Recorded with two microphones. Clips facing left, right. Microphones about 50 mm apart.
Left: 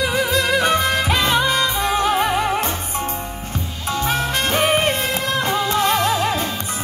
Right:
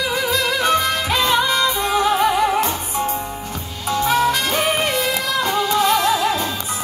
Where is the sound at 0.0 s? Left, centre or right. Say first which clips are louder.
Left 1 dB; left.